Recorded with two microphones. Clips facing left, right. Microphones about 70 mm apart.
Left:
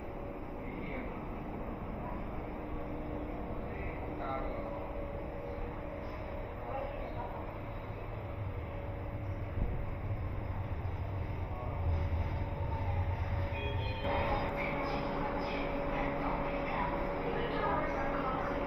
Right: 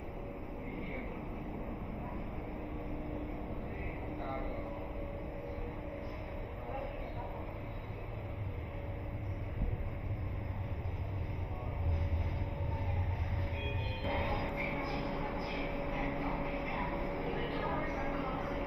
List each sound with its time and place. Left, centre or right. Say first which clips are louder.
14.0 s music: left 3 dB; left